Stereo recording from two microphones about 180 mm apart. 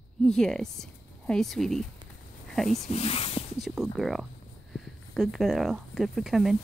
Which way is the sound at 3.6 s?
Centre (ahead or behind).